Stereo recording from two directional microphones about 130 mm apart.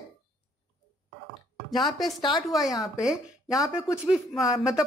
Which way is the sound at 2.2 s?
35° left (ahead or behind).